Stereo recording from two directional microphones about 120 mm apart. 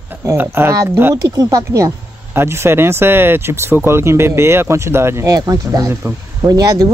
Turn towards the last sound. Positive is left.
turn(degrees=-30)  # may be behind; listen again after turning